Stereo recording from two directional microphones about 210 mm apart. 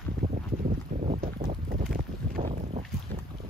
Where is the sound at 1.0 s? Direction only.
40° right (ahead or behind).